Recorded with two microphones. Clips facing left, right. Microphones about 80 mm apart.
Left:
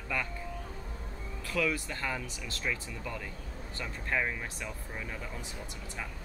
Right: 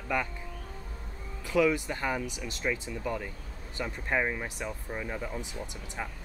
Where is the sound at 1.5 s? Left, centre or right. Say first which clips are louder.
Right 6 dB; centre.